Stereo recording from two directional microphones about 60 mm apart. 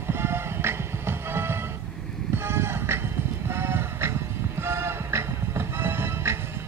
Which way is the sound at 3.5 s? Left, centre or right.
Right.